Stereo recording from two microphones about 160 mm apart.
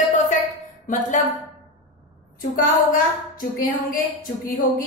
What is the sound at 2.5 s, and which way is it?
A woman's voice, 60° left (ahead or behind).